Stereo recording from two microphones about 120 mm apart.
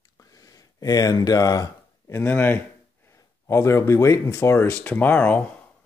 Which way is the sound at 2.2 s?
15° left (ahead or behind).